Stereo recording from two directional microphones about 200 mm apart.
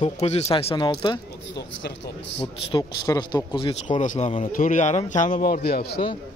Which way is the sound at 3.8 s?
40° left (ahead or behind).